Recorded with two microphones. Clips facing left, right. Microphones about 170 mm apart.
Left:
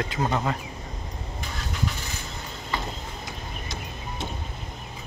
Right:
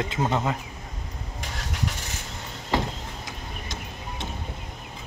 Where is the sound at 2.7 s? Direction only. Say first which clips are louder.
Right 6 dB; 90° right.